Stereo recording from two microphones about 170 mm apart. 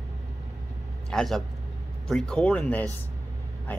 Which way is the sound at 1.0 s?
5° left (ahead or behind).